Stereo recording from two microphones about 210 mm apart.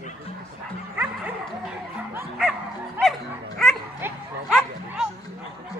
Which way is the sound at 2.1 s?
5° right (ahead or behind).